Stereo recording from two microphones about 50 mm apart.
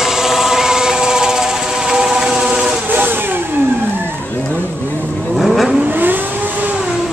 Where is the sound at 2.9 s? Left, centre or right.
Right.